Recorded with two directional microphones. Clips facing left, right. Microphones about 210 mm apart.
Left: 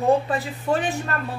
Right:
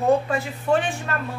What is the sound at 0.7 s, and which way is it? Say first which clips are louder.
Speech: right 2 dB; 40° left (ahead or behind).